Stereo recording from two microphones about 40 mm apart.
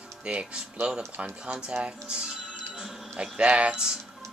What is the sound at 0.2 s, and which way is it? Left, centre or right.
Speech, right.